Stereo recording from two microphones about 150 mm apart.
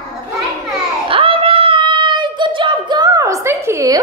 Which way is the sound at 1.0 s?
35° right (ahead or behind).